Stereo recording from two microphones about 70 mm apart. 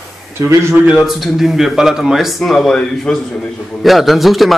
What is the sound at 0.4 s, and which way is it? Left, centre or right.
Speech, right.